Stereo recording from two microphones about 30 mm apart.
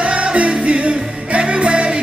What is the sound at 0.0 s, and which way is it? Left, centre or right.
Music, right.